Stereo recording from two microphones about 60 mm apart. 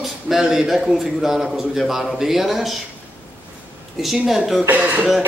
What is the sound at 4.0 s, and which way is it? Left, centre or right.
Speech, centre.